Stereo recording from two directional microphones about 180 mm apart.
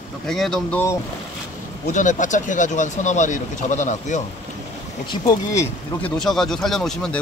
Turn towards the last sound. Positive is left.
turn(degrees=5)  # may be behind; listen again after turning